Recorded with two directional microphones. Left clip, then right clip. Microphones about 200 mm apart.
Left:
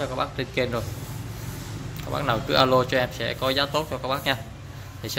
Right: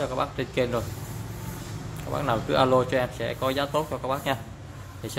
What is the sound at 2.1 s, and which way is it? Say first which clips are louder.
Speech: left 2 dB; 5° right (ahead or behind).